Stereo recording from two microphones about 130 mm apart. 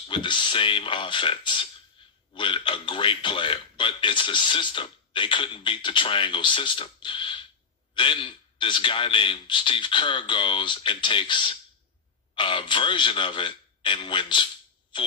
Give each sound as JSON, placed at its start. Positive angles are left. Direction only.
{"t": 0.1, "sound": "a man's voice", "side_deg": 40}